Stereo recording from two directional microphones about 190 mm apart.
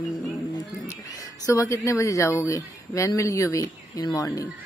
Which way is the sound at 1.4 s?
15° left (ahead or behind).